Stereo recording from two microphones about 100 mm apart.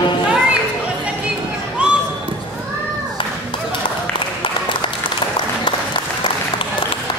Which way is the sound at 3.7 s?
60° left (ahead or behind).